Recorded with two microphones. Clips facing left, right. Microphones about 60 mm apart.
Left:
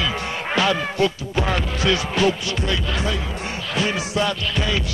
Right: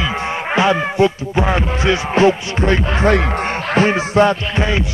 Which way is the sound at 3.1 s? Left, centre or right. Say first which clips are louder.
Right 11 dB; right.